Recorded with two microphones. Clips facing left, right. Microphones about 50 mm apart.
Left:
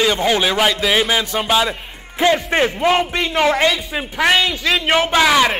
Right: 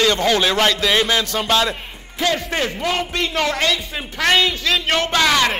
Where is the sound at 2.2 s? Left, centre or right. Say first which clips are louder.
Left 5 dB; left.